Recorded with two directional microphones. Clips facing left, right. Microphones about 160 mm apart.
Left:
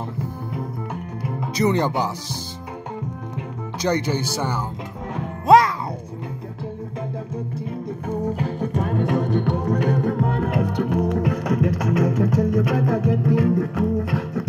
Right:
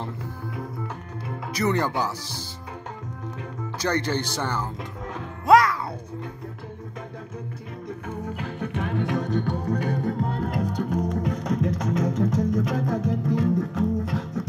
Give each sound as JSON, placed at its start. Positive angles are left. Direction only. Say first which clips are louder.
{"t": 1.4, "sound": "speech", "louder": "left 4 dB", "side_deg": 20}
{"t": 3.8, "sound": "speech", "louder": "left 3 dB", "side_deg": 15}
{"t": 5.1, "sound": "music", "louder": "left 3 dB", "side_deg": 25}
{"t": 8.3, "sound": "music", "louder": "left 6 dB", "side_deg": 40}